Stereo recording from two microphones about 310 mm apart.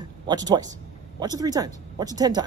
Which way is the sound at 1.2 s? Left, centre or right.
Centre.